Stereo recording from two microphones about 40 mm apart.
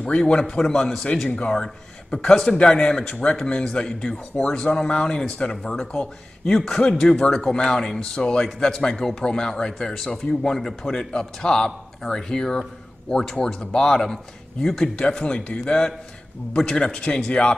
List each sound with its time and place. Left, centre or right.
0.3 s a man's voice: centre
15.0 s speech: left